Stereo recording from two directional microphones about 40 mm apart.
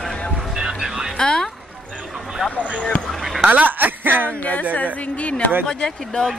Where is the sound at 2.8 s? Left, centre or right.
Centre.